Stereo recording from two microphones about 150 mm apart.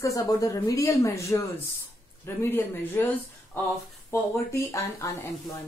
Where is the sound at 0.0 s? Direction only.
20° left (ahead or behind).